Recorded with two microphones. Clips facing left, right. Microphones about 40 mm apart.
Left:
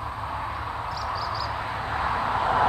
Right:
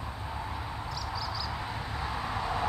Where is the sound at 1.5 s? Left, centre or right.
Left.